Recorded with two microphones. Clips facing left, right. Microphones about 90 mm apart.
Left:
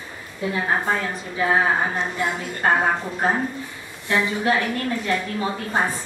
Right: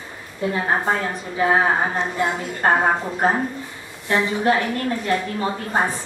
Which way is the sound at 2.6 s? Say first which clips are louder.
Right 2 dB; 20° right (ahead or behind).